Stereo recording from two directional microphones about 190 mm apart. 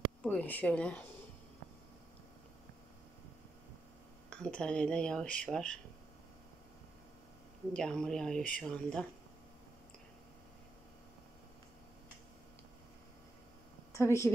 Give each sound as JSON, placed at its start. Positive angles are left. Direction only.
{"t": 0.2, "sound": "speech", "side_deg": 10}
{"t": 4.3, "sound": "speech", "side_deg": 5}
{"t": 7.7, "sound": "speech", "side_deg": 5}
{"t": 13.9, "sound": "speech", "side_deg": 15}